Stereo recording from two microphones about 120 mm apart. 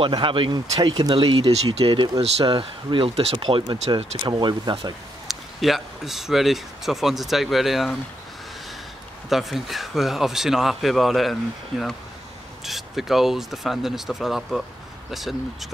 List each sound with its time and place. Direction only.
0.0 s speech: 45° right (ahead or behind)
1.2 s speech: 45° right (ahead or behind)
3.3 s speech: 40° right (ahead or behind)
5.3 s speech: centre (ahead or behind)
9.3 s speech: centre (ahead or behind)
12.6 s speech: centre (ahead or behind)